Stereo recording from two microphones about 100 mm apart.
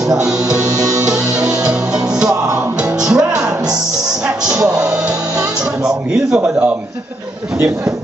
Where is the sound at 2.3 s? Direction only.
30° right (ahead or behind).